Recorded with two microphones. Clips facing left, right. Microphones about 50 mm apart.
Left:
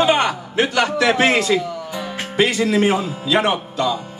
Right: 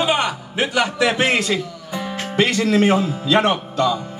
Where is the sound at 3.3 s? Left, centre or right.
Right.